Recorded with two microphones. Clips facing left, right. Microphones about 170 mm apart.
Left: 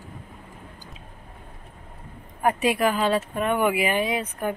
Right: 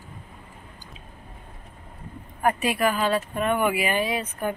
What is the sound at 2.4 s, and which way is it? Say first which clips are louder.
Speech: left 1 dB; 15° left (ahead or behind).